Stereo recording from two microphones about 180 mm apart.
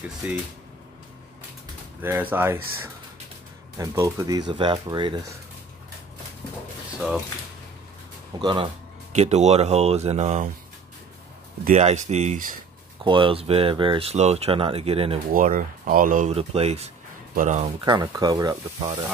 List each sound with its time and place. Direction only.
0.2 s speech: 10° right (ahead or behind)
2.0 s speech: 10° right (ahead or behind)
8.4 s speech: 25° right (ahead or behind)
9.1 s speech: 40° right (ahead or behind)
11.6 s speech: 40° right (ahead or behind)
13.0 s speech: 30° right (ahead or behind)
15.3 s speech: 50° right (ahead or behind)
16.3 s speech: 35° right (ahead or behind)
17.8 s speech: 20° right (ahead or behind)